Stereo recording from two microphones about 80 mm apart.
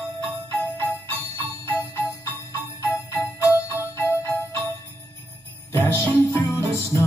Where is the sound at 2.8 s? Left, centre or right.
Left.